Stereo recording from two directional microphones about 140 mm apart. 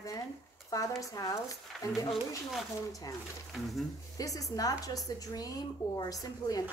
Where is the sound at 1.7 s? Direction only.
Centre (ahead or behind).